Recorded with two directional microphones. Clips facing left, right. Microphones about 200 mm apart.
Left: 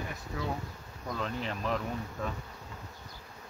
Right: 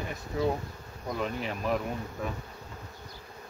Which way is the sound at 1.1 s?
10° right (ahead or behind).